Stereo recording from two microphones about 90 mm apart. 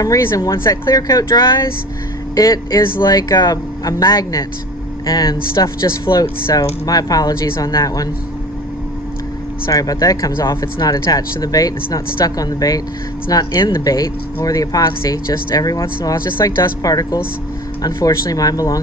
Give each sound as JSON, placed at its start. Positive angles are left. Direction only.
{"t": 0.2, "sound": "speech", "side_deg": 35}
{"t": 9.7, "sound": "speech", "side_deg": 40}